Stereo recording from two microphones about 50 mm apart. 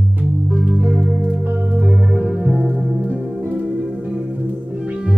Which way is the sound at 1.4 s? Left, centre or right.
Right.